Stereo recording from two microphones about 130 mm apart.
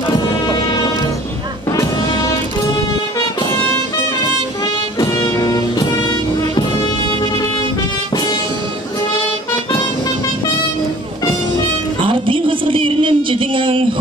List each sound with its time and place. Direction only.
0.5 s music: 35° left (ahead or behind)
5.2 s music: 30° left (ahead or behind)
12.0 s a sound: 40° right (ahead or behind)